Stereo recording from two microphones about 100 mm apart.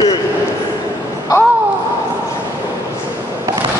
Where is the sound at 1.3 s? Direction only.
35° left (ahead or behind).